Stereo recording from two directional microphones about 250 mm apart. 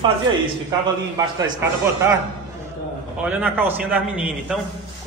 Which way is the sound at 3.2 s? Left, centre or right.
Centre.